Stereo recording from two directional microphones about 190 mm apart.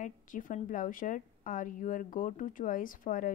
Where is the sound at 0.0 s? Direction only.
45° left (ahead or behind).